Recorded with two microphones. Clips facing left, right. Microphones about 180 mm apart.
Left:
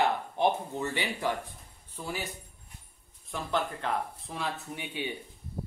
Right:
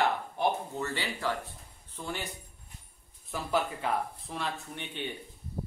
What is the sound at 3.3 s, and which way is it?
A man's voice, 5° right (ahead or behind).